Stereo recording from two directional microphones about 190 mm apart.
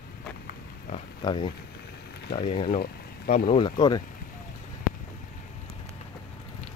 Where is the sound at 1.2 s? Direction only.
25° left (ahead or behind).